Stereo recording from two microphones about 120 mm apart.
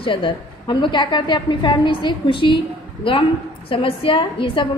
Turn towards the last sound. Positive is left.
turn(degrees=45)  # may be behind; listen again after turning